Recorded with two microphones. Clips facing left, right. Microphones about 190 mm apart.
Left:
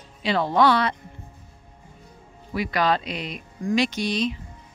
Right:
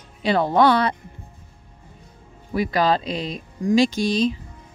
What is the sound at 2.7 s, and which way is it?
Speech, 35° right (ahead or behind).